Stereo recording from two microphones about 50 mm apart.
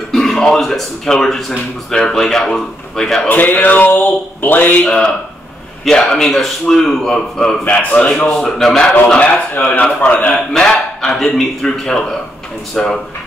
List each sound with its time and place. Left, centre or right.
0.1 s a sound: centre
0.6 s a man's voice: centre
3.3 s speech: left
4.8 s a man's voice: centre
7.6 s speech: left
8.3 s a man's voice: centre
9.6 s speech: left
9.9 s speech: left
10.3 s a man's voice: centre
12.7 s a man's voice: centre